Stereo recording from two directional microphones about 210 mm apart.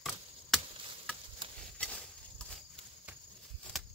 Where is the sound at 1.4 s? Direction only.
25° right (ahead or behind).